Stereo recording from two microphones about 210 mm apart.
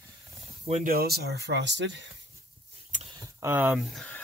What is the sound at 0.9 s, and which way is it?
Speech, 45° right (ahead or behind).